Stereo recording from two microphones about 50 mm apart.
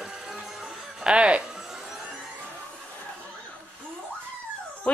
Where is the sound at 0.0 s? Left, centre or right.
Centre.